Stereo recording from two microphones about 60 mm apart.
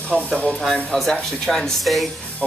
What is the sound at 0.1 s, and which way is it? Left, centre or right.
Speech, centre.